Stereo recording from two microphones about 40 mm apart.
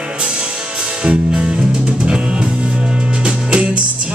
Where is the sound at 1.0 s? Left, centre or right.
Right.